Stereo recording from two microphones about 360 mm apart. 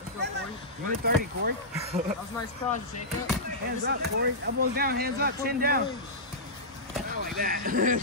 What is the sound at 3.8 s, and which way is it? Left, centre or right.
Speech, right.